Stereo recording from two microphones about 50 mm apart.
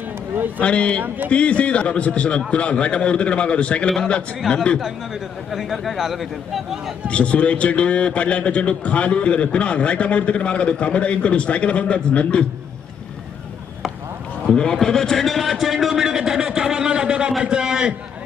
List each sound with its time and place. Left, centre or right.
0.6 s a man's voice: left
4.4 s a man's voice: centre
7.1 s a man's voice: left
14.5 s a man's voice: centre